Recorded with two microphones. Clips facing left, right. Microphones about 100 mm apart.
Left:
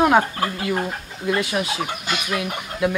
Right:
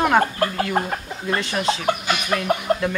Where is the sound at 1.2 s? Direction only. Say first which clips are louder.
Left 3 dB; 5° left (ahead or behind).